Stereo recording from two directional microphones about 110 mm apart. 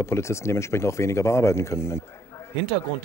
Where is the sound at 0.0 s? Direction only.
25° left (ahead or behind).